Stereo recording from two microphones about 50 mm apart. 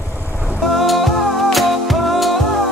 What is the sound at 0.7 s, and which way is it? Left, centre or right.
Music, centre.